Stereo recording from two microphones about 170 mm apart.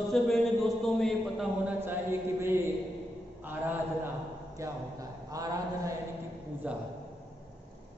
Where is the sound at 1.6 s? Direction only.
15° right (ahead or behind).